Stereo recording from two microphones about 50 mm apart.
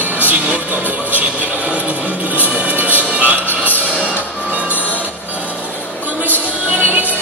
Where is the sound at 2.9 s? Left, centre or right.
Right.